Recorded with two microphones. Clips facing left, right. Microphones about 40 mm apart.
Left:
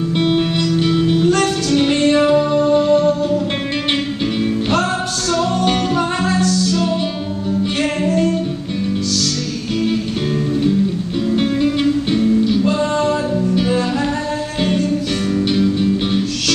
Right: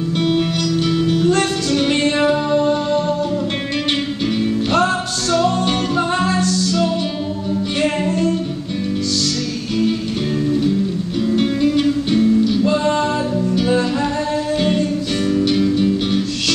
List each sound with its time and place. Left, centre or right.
0.2 s music: centre
4.4 s music: centre
6.2 s music: left
11.2 s music: centre
12.7 s music: right
15.4 s music: centre